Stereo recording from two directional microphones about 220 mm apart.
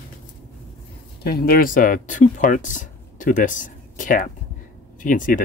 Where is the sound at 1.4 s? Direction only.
40° left (ahead or behind).